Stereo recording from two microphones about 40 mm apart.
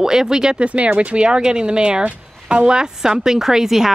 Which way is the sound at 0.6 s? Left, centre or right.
Right.